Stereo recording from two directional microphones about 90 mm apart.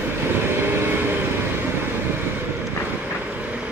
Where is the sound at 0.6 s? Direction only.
25° right (ahead or behind).